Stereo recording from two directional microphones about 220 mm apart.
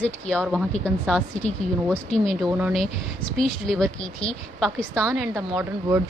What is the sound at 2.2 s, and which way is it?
A woman's voice, centre (ahead or behind).